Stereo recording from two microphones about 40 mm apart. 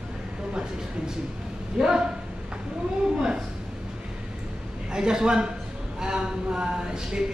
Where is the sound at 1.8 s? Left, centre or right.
Centre.